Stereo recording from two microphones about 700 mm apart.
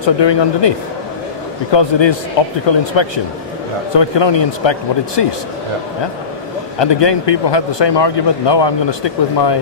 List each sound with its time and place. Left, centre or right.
0.0 s speech: left
6.8 s speech: left